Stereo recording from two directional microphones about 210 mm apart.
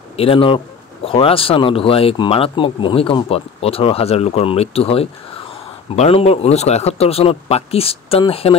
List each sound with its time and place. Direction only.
0.1 s speech: 25° left (ahead or behind)